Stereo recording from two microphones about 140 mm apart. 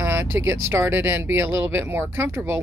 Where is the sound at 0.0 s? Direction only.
15° right (ahead or behind).